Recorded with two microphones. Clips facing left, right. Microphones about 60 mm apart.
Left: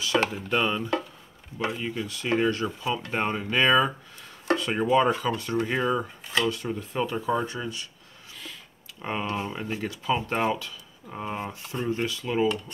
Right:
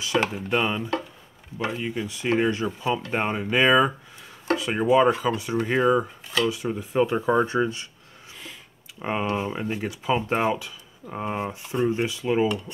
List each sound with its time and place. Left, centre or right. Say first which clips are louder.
0.2 s speech: right 1 dB; centre
6.2 s speech: right 2 dB; centre
6.5 s speech: right 5 dB; centre
7.4 s speech: right 8 dB; right
9.0 s speech: right 4 dB; centre